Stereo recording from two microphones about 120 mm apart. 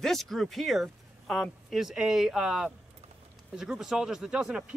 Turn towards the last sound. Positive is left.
turn(degrees=-10)  # may be behind; listen again after turning